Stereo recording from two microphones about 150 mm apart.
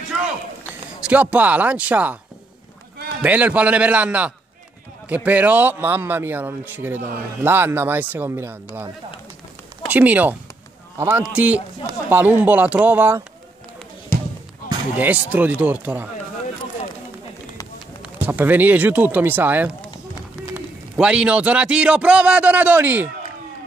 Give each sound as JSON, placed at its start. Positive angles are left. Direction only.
{"t": 1.0, "sound": "a man's voice", "side_deg": -10}
{"t": 3.2, "sound": "a man's voice", "side_deg": -10}
{"t": 9.8, "sound": "a man's voice", "side_deg": -10}
{"t": 14.1, "sound": "basketball bounce", "side_deg": 15}
{"t": 15.0, "sound": "a man's voice", "side_deg": -10}
{"t": 18.2, "sound": "a man's voice", "side_deg": -10}